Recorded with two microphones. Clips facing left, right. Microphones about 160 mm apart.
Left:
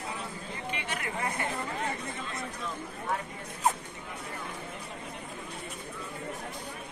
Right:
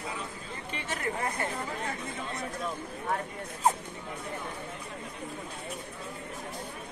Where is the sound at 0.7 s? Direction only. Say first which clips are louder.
Right 5 dB; 40° right (ahead or behind).